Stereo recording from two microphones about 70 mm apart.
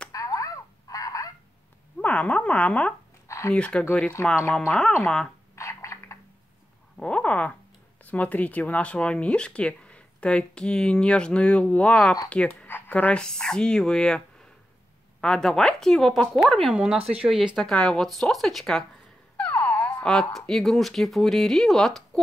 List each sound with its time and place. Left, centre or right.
0.1 s a sound: left
2.0 s speech: centre
3.3 s a sound: left
3.5 s speech: centre
5.0 s speech: centre
5.6 s frog: left
7.0 s speech: centre
12.6 s a sound: left
12.9 s speech: centre
16.7 s speech: centre
19.3 s a sound: left
20.0 s speech: centre